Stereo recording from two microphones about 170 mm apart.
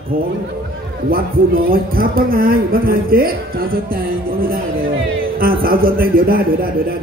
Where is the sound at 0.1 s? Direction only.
60° right (ahead or behind).